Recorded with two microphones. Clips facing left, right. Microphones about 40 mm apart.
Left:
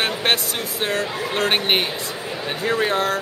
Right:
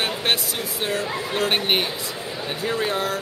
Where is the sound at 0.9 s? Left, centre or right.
Centre.